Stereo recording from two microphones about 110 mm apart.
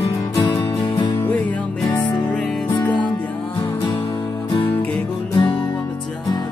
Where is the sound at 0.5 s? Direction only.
50° left (ahead or behind).